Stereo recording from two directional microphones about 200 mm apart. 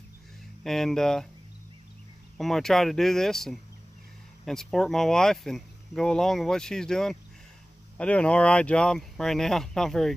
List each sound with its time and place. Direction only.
0.7 s speech: centre (ahead or behind)
2.3 s speech: centre (ahead or behind)